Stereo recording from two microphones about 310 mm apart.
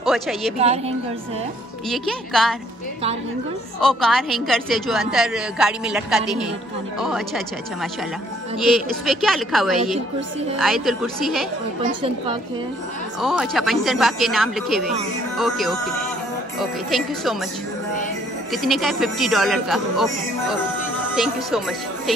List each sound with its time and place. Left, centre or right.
0.0 s a woman's voice: centre
0.6 s a woman's voice: centre
1.9 s a woman's voice: centre
3.8 s a woman's voice: centre
11.8 s a woman's voice: centre
13.2 s a woman's voice: centre
18.5 s a woman's voice: centre
21.1 s a woman's voice: centre